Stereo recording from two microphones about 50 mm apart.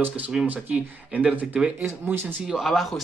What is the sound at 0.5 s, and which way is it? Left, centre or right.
Speech, right.